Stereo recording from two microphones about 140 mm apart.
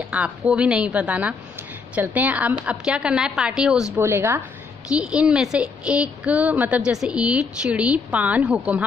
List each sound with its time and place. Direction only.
0.1 s a woman's voice: 10° right (ahead or behind)
3.9 s a woman's voice: 20° right (ahead or behind)
4.8 s a woman's voice: 5° right (ahead or behind)